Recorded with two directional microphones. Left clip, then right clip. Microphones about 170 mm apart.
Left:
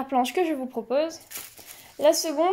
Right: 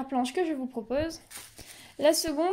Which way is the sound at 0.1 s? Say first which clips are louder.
Left 5 dB; 5° left (ahead or behind).